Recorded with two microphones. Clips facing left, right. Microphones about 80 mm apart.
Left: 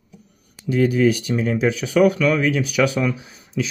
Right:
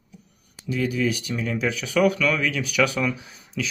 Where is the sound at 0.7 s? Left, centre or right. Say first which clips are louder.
Left 7 dB; left.